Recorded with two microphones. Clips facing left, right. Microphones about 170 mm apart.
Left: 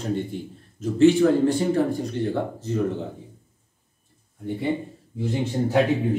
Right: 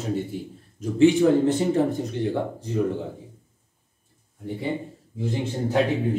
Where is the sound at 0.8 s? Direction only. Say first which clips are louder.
Left 1 dB; 15° right (ahead or behind).